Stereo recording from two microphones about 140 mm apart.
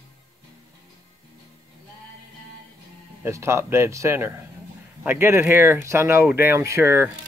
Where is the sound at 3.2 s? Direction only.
20° right (ahead or behind).